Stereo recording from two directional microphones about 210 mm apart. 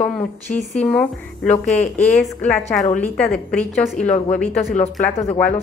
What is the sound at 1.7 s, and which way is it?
Speech, 35° left (ahead or behind).